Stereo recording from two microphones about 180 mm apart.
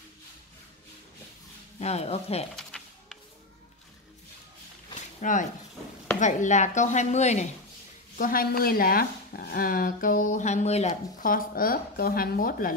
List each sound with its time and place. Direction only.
1.8 s speech: 35° left (ahead or behind)
2.5 s a sound: centre (ahead or behind)
5.2 s speech: 45° left (ahead or behind)
8.2 s speech: 50° left (ahead or behind)